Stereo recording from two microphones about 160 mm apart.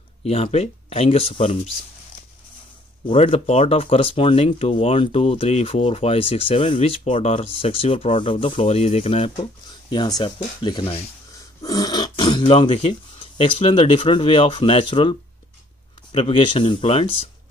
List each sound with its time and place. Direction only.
0.2 s speech: 40° left (ahead or behind)
3.1 s speech: 40° left (ahead or behind)
11.6 s speech: 25° left (ahead or behind)